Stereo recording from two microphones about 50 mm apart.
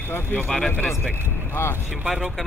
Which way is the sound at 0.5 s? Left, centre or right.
Centre.